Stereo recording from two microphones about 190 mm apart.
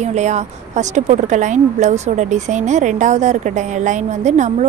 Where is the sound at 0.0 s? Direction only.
35° right (ahead or behind).